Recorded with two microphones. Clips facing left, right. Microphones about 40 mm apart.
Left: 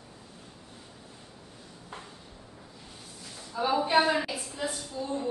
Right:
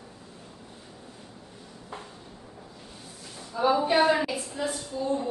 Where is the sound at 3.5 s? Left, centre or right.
Centre.